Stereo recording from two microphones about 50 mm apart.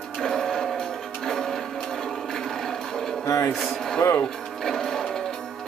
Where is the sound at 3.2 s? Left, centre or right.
Left.